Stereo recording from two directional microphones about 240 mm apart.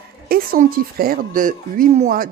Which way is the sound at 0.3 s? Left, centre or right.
Right.